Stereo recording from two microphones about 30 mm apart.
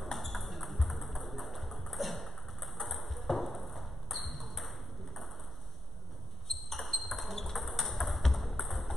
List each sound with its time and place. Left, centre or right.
0.2 s tap: centre
6.4 s a sound: centre
7.7 s tap: centre
8.2 s ping: centre